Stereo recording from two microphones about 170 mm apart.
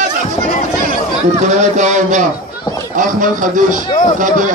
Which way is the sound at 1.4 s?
45° right (ahead or behind).